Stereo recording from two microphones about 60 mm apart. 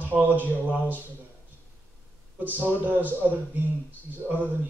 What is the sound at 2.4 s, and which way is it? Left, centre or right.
Speech, right.